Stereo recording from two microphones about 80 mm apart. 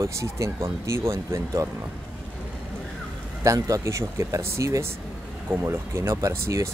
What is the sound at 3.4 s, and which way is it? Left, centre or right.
Speech, right.